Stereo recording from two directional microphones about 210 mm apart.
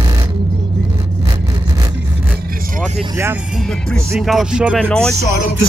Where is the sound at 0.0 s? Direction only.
20° right (ahead or behind).